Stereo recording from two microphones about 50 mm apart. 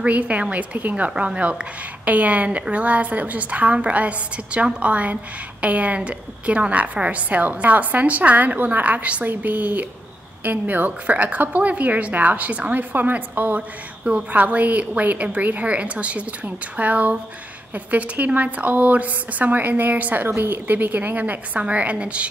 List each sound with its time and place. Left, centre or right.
0.0 s a woman's voice: right
20.2 s a woman's voice: right